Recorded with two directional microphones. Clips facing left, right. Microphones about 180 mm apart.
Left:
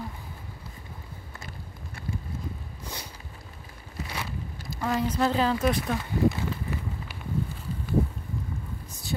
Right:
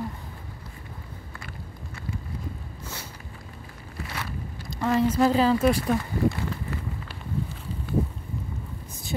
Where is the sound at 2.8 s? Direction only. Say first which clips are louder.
Even; 15° left (ahead or behind).